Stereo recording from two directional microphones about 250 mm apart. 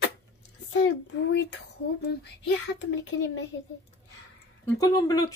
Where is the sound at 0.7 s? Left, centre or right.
Left.